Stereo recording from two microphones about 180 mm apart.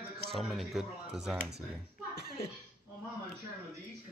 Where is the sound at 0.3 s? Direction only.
Centre (ahead or behind).